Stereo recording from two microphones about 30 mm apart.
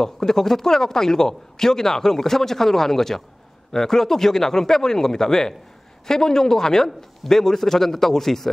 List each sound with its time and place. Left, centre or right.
0.0 s speech: centre